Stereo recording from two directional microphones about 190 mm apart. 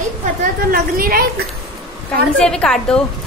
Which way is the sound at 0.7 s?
50° right (ahead or behind).